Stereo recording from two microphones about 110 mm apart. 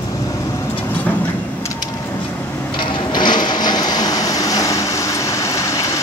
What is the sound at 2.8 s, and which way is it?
Sewing machine, 45° left (ahead or behind).